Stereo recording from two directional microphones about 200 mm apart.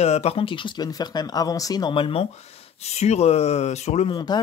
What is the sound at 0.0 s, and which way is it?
Speech, 30° left (ahead or behind).